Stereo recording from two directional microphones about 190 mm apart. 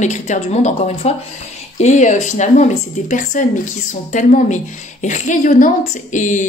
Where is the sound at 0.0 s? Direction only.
40° left (ahead or behind).